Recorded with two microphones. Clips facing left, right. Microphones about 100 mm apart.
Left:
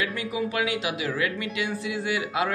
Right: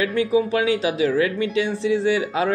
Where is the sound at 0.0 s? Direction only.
30° right (ahead or behind).